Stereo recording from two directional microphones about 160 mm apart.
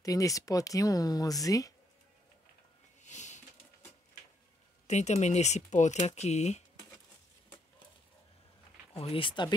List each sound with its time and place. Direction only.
0.0 s speech: 20° left (ahead or behind)
3.0 s a sound: 50° left (ahead or behind)
4.8 s speech: 45° left (ahead or behind)
8.9 s speech: 35° left (ahead or behind)